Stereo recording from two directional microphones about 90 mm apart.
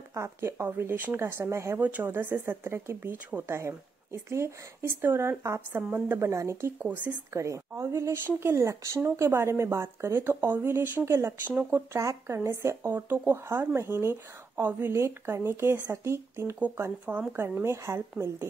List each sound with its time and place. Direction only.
0.1 s speech: 30° right (ahead or behind)
1.8 s speech: 15° right (ahead or behind)
6.1 s speech: 30° right (ahead or behind)
6.8 s speech: 20° right (ahead or behind)
7.3 s speech: 35° right (ahead or behind)
16.5 s speech: 15° right (ahead or behind)